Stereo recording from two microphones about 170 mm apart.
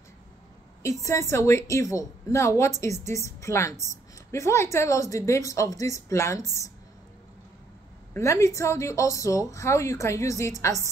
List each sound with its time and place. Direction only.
1.3 s a woman's voice: 15° left (ahead or behind)
8.1 s a woman's voice: 15° left (ahead or behind)